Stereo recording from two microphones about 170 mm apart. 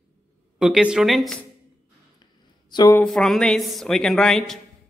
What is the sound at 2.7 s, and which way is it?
Speech, 20° left (ahead or behind).